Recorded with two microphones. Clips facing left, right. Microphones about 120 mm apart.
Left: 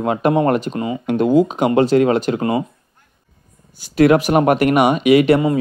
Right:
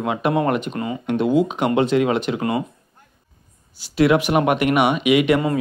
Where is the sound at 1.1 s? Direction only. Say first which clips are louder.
Left 4 dB; 45° left (ahead or behind).